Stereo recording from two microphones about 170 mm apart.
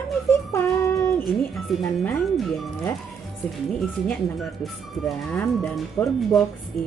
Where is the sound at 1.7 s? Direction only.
Centre (ahead or behind).